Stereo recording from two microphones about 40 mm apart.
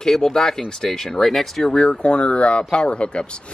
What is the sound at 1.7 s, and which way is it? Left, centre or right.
Speech, left.